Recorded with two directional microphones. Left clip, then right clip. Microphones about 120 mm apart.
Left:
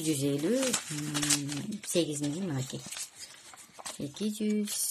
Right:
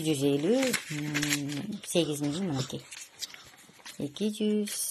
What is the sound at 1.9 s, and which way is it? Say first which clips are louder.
Speech: right 2 dB; 15° right (ahead or behind).